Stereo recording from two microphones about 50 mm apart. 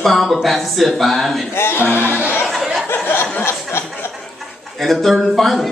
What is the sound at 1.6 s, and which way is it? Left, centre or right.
Speech, left.